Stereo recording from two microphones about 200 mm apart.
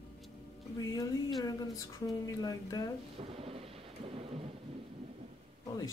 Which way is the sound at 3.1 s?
30° right (ahead or behind).